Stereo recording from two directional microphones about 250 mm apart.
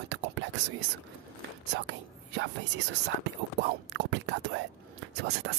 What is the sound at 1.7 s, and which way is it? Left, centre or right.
Speech, right.